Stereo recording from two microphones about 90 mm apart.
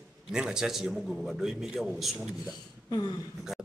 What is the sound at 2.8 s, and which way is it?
Speech, 45° left (ahead or behind).